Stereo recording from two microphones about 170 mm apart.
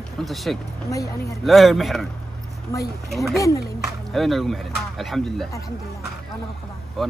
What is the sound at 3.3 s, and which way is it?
Speech, 20° left (ahead or behind).